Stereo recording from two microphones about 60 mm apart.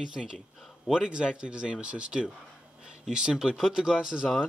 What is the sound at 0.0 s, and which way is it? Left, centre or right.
Speech, centre.